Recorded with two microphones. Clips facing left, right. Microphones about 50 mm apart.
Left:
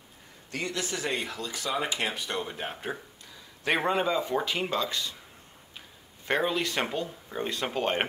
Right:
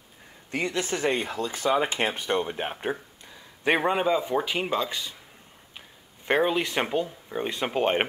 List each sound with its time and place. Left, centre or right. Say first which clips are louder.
0.5 s speech: right 5 dB; right
5.8 s a sound: right 2 dB; centre
7.3 s speech: right 4 dB; centre